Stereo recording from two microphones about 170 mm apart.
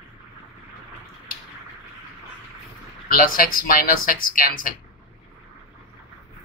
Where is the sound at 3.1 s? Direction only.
55° left (ahead or behind).